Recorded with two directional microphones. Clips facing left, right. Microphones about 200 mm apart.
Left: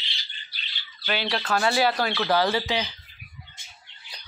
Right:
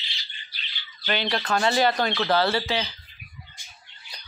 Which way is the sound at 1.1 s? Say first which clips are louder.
Right 1 dB; 5° left (ahead or behind).